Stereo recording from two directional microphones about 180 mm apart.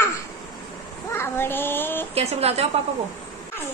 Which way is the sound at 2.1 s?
35° right (ahead or behind).